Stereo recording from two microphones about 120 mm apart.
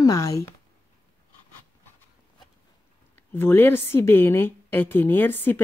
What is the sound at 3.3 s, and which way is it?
A woman's voice, 20° left (ahead or behind).